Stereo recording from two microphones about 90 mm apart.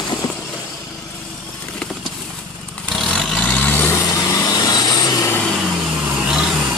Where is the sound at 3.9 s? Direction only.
45° left (ahead or behind).